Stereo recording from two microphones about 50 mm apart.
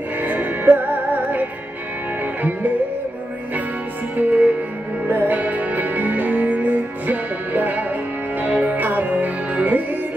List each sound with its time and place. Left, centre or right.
0.2 s music: right
4.2 s music: right